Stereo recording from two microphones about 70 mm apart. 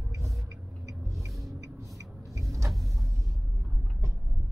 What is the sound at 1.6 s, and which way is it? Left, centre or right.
Music, right.